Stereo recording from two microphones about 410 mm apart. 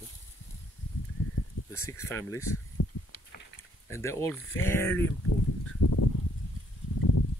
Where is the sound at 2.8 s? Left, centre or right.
Left.